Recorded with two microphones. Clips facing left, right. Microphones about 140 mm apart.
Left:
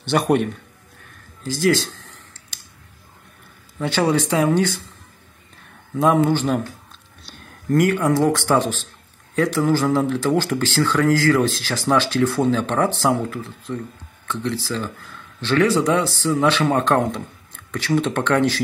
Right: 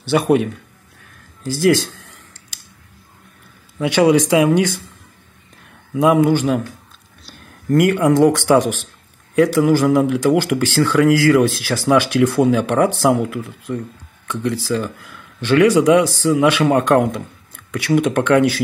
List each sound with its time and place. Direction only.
0.0 s a man's voice: 5° right (ahead or behind)
2.5 s a sound: 10° right (ahead or behind)
3.7 s speech: 15° right (ahead or behind)
5.9 s speech: 10° right (ahead or behind)
7.2 s a sound: 5° right (ahead or behind)
7.9 s speech: 15° right (ahead or behind)